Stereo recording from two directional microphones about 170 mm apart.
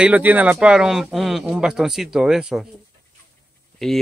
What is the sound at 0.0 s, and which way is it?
Speech, 10° right (ahead or behind).